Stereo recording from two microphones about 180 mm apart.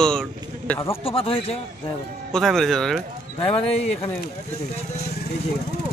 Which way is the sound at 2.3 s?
Centre (ahead or behind).